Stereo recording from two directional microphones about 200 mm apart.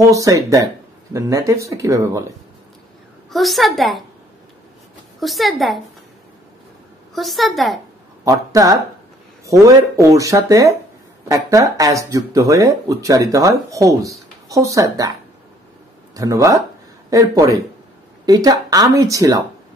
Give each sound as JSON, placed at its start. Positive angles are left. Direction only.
{"t": 0.0, "sound": "speech", "side_deg": -15}
{"t": 3.3, "sound": "a woman's voice", "side_deg": 0}
{"t": 5.2, "sound": "a woman's voice", "side_deg": 0}
{"t": 7.2, "sound": "a woman's voice", "side_deg": 0}
{"t": 8.2, "sound": "speech", "side_deg": -15}
{"t": 16.2, "sound": "speech", "side_deg": -15}